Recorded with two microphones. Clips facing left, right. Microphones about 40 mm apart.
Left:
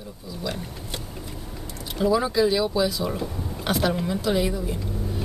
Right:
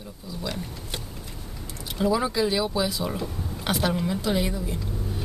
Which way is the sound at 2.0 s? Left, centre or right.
Centre.